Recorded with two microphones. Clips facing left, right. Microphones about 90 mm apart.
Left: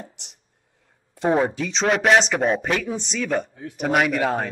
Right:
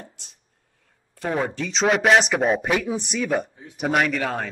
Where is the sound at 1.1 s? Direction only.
20° left (ahead or behind).